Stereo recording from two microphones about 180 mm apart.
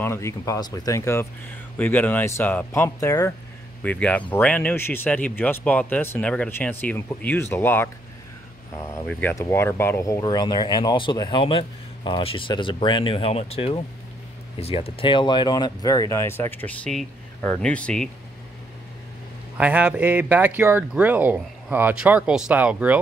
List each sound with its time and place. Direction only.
0.0 s speech: 15° left (ahead or behind)
9.0 s speech: 5° left (ahead or behind)
9.3 s speech: 15° left (ahead or behind)
19.5 s speech: 10° right (ahead or behind)